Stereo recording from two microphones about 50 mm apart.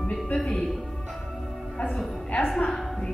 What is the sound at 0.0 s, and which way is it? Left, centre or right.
Music, centre.